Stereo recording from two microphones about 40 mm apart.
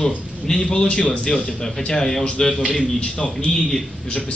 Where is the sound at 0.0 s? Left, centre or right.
Centre.